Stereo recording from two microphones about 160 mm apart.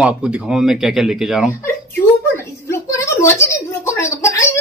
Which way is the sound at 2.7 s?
20° left (ahead or behind).